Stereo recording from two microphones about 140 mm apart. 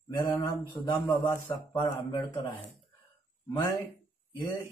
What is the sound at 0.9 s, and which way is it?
A man's voice, 20° left (ahead or behind).